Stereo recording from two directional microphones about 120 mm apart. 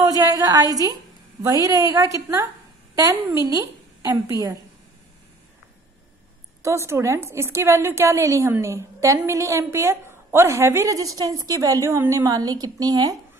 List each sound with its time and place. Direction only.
0.0 s a woman's voice: 30° right (ahead or behind)
4.0 s a woman's voice: 30° right (ahead or behind)
6.6 s a woman's voice: 25° right (ahead or behind)